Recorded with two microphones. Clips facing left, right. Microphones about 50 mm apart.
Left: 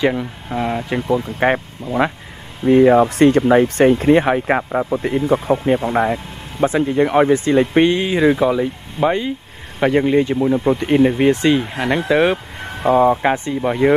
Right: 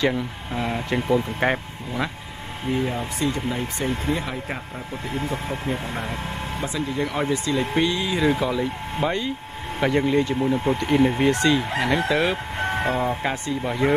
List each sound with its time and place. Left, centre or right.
0.0 s speech: centre
1.1 s speech: centre
1.9 s speech: left
2.7 s speech: left
6.6 s speech: left
8.2 s speech: left
13.3 s speech: left